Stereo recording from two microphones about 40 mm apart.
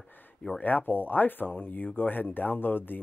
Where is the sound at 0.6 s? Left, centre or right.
Left.